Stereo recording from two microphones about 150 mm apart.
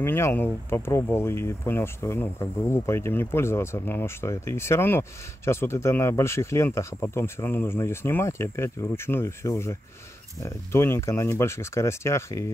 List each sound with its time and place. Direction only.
0.0 s speech: 15° left (ahead or behind)